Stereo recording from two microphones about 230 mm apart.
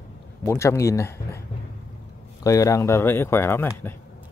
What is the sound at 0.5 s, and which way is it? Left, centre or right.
Speech, centre.